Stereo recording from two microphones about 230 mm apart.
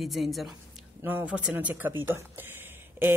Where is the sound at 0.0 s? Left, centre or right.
Centre.